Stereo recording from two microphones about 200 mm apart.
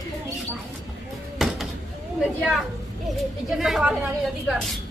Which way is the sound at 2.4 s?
Centre (ahead or behind).